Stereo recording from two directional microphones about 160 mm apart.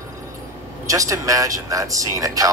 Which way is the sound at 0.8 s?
20° right (ahead or behind).